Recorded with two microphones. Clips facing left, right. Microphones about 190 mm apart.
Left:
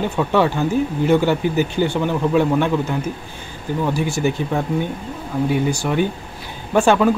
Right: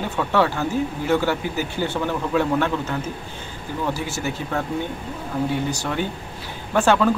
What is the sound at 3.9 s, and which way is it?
Speech, 15° left (ahead or behind).